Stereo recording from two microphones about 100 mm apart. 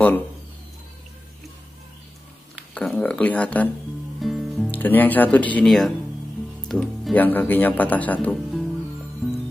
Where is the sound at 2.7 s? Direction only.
15° left (ahead or behind).